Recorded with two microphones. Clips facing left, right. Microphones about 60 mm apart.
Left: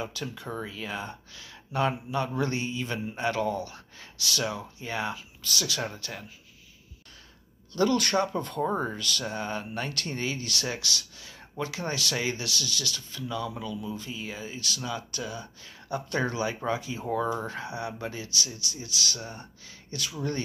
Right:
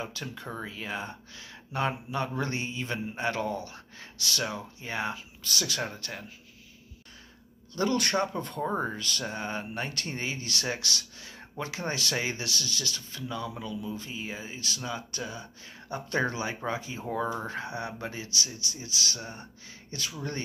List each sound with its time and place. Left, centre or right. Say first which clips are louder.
0.2 s speech: left 2 dB; right
7.7 s speech: left 3 dB; right